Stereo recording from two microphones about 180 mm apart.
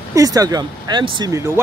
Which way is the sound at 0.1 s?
20° right (ahead or behind).